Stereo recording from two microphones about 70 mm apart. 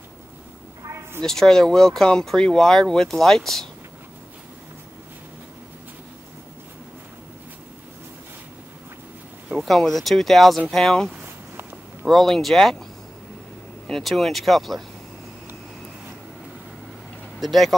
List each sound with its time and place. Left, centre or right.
0.8 s a sound: right
1.2 s speech: centre
9.5 s speech: centre
13.8 s speech: centre
17.4 s speech: centre